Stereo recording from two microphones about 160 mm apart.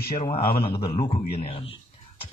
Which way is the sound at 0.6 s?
35° left (ahead or behind).